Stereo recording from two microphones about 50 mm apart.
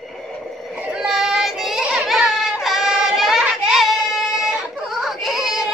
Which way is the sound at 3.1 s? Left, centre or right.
Centre.